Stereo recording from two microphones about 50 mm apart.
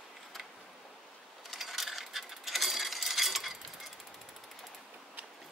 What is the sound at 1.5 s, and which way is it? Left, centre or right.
Coin, centre.